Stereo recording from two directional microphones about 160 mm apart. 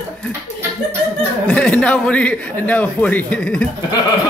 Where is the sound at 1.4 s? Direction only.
5° left (ahead or behind).